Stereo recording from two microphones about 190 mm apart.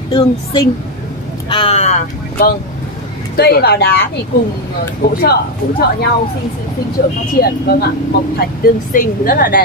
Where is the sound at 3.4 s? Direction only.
55° left (ahead or behind).